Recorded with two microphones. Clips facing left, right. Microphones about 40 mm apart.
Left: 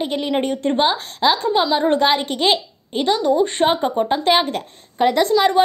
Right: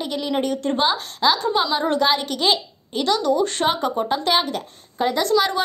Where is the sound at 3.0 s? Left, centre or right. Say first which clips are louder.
Left 2 dB; left.